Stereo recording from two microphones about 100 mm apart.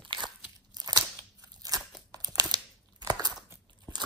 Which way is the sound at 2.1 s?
35° right (ahead or behind).